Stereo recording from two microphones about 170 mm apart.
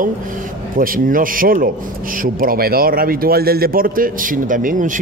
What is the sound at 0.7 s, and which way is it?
A man's voice, 55° right (ahead or behind).